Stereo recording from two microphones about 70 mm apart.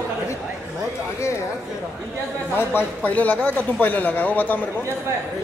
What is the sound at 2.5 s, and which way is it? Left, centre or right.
Speech, left.